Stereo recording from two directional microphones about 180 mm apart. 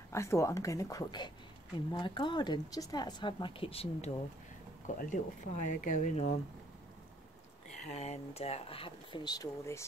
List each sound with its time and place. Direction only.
0.1 s a woman's voice: 15° left (ahead or behind); by 4.1 s 35° left (ahead or behind)
4.8 s speech: 45° left (ahead or behind)
7.7 s speech: 40° left (ahead or behind); by 9.8 s 15° left (ahead or behind)